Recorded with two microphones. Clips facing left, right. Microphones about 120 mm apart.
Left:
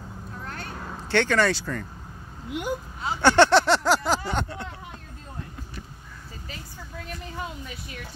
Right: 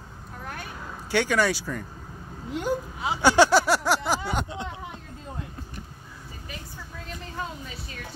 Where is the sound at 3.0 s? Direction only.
15° right (ahead or behind).